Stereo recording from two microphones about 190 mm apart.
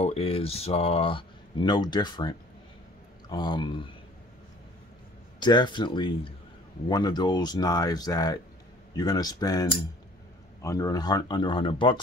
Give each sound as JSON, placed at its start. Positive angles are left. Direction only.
{"t": 0.0, "sound": "speech", "side_deg": 30}
{"t": 5.4, "sound": "speech", "side_deg": 25}